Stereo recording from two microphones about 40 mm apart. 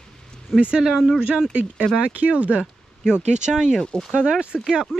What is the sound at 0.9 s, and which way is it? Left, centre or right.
Speech, centre.